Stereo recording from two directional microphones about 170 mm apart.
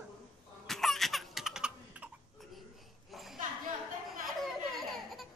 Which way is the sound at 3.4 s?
50° right (ahead or behind).